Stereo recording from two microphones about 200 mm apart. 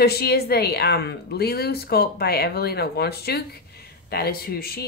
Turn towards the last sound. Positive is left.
turn(degrees=50)  # may be behind; listen again after turning